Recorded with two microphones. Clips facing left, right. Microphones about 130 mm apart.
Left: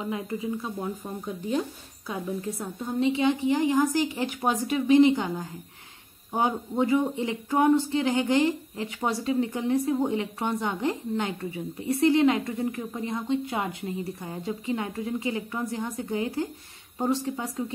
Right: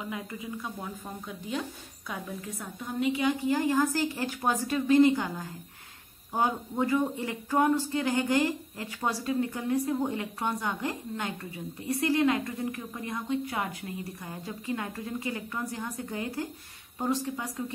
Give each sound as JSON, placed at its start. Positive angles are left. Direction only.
{"t": 0.0, "sound": "a woman's voice", "side_deg": 25}
{"t": 2.0, "sound": "a woman's voice", "side_deg": 30}
{"t": 6.7, "sound": "a woman's voice", "side_deg": 25}